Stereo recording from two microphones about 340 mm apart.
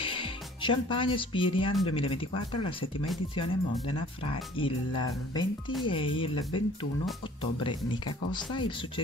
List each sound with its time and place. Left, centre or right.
0.0 s speech: centre